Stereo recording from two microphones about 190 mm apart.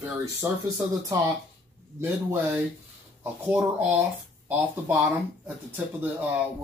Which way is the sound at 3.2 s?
10° right (ahead or behind).